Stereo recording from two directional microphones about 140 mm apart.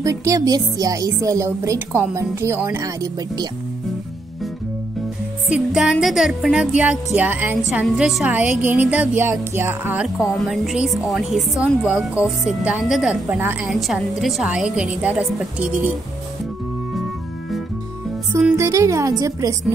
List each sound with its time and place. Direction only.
0.0 s speech: 20° right (ahead or behind)
5.5 s a woman's voice: 5° right (ahead or behind)
10.0 s a woman's voice: centre (ahead or behind)
13.7 s a woman's voice: centre (ahead or behind)
18.6 s speech: 20° right (ahead or behind)